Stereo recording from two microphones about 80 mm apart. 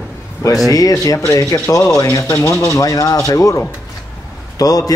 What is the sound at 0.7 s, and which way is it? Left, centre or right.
A man's voice, left.